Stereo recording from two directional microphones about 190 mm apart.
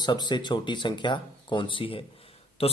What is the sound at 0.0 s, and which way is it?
Speech, 25° left (ahead or behind).